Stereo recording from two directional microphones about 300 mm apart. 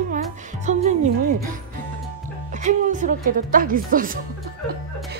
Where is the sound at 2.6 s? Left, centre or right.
Right.